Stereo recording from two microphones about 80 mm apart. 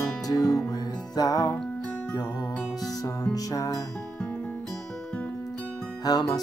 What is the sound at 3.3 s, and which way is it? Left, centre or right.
Speech, left.